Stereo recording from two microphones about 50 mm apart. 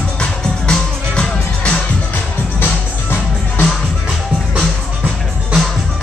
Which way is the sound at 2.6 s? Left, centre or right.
Left.